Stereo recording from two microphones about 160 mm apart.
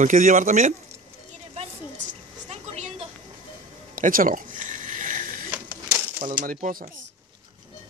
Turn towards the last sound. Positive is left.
turn(degrees=-60)  # may be behind; listen again after turning